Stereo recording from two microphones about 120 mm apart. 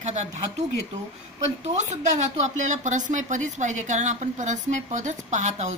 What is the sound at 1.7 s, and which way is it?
Speech, 80° right.